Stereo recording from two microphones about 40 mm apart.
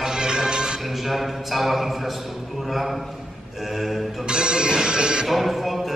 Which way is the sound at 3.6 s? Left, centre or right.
Centre.